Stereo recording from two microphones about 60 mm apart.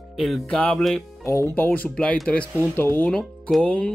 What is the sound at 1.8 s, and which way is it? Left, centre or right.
Speech, centre.